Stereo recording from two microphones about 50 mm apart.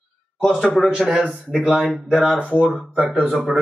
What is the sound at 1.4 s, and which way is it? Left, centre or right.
A man's voice, centre.